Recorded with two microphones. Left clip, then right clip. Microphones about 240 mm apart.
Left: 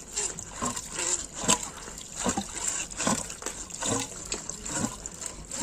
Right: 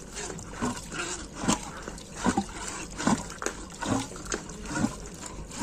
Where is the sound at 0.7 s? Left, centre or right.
Left.